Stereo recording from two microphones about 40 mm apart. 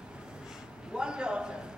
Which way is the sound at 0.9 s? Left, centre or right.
Right.